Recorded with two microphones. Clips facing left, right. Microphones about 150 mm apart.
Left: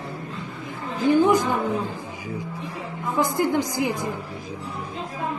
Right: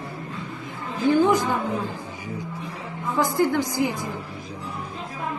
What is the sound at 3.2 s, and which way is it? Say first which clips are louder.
Speech: right 1 dB; 15° left (ahead or behind).